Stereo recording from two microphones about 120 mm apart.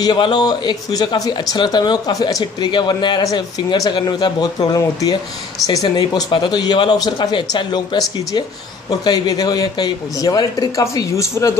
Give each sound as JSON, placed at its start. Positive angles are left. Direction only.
{"t": 0.0, "sound": "speech", "side_deg": 40}
{"t": 9.0, "sound": "speech", "side_deg": 35}